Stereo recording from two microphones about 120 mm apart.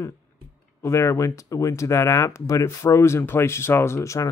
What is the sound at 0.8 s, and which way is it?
Speech, 25° left (ahead or behind).